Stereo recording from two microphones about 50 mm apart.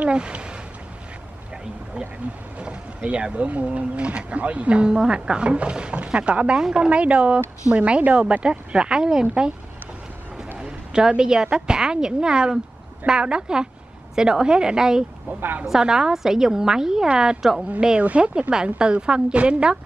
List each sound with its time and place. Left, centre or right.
0.0 s speech: right
2.6 s a woman's voice: right
10.6 s a woman's voice: centre
18.0 s speech: right